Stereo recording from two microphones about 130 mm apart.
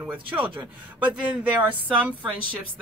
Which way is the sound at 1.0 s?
10° right (ahead or behind).